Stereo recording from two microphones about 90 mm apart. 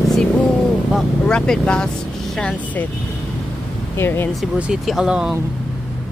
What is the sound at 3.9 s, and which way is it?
Speech, 25° left (ahead or behind).